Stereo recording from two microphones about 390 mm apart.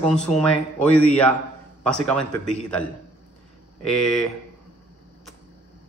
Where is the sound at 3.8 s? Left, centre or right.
Centre.